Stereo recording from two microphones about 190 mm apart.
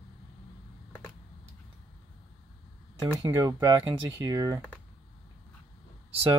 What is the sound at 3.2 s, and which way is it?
Speech, 20° right (ahead or behind).